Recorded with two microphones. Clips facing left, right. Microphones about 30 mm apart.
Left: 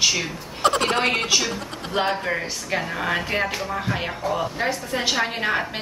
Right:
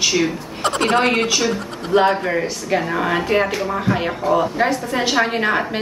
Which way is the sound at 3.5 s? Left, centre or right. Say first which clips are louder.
Right 6 dB; centre.